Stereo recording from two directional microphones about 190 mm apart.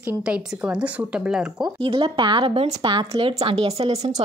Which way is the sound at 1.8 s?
30° right (ahead or behind).